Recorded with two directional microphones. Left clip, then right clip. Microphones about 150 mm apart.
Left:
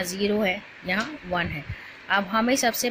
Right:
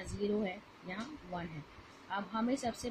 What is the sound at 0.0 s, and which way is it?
A woman's voice, 20° left (ahead or behind).